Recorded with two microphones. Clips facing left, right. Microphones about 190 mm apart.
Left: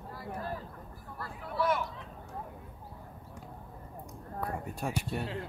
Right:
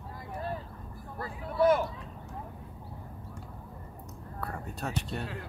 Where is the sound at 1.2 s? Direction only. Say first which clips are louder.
Right 7 dB; 40° right (ahead or behind).